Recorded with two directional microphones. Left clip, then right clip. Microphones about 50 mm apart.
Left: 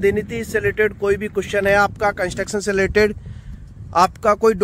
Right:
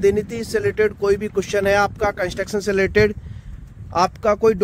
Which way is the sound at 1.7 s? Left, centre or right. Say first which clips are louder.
Left 2 dB; centre.